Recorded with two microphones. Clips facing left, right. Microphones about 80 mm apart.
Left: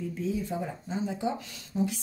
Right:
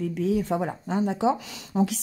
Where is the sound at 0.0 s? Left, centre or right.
Right.